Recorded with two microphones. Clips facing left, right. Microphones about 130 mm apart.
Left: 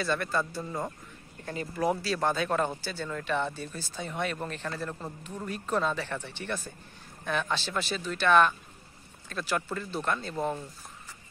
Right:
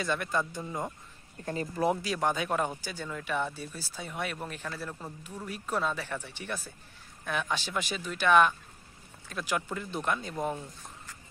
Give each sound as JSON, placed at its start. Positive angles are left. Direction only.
{"t": 0.0, "sound": "speech", "side_deg": -15}
{"t": 1.4, "sound": "speech", "side_deg": -30}
{"t": 1.9, "sound": "speech", "side_deg": -15}